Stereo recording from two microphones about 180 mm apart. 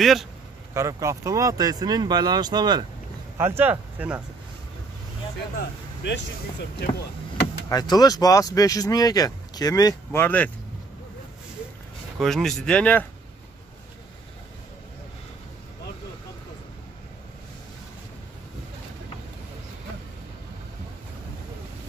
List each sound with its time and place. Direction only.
0.0 s speech: centre (ahead or behind)
0.7 s speech: 15° right (ahead or behind)
3.3 s speech: 10° right (ahead or behind)
5.6 s speech: 70° left (ahead or behind)
7.7 s speech: 20° left (ahead or behind)
12.2 s speech: centre (ahead or behind)